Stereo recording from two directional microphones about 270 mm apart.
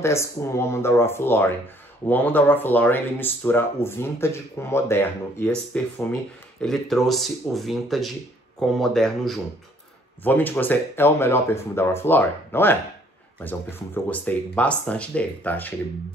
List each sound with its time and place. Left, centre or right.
0.0 s speech: centre